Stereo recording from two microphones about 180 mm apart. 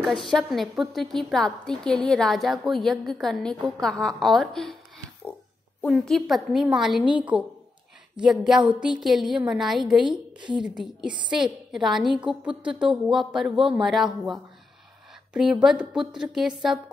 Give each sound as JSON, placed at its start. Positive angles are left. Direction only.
{"t": 0.3, "sound": "a woman's voice", "side_deg": 0}
{"t": 5.8, "sound": "a woman's voice", "side_deg": 0}
{"t": 13.6, "sound": "speech", "side_deg": -30}
{"t": 13.8, "sound": "a woman's voice", "side_deg": 0}